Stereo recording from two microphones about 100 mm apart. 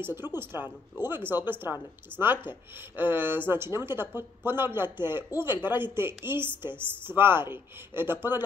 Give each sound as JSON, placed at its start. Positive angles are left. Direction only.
{"t": 0.0, "sound": "speech", "side_deg": -20}
{"t": 2.1, "sound": "speech", "side_deg": 15}
{"t": 3.0, "sound": "speech", "side_deg": -20}